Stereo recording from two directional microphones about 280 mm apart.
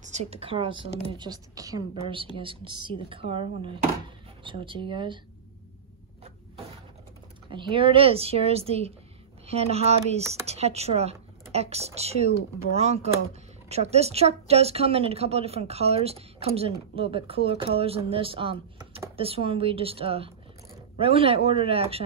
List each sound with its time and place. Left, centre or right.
0.0 s a woman's voice: right
7.4 s speech: centre